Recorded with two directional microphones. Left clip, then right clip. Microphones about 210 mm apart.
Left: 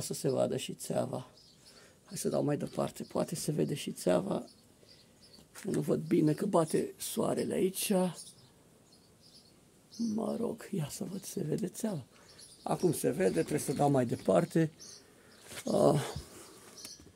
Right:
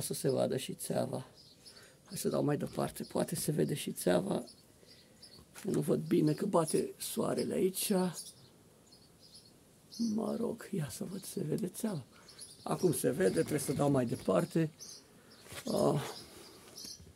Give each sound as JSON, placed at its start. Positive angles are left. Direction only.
{"t": 0.0, "sound": "speech", "side_deg": 5}
{"t": 5.7, "sound": "speech", "side_deg": 0}
{"t": 10.1, "sound": "speech", "side_deg": 10}
{"t": 15.6, "sound": "dog", "side_deg": 20}